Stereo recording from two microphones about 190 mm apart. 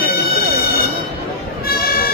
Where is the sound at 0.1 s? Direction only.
55° left (ahead or behind).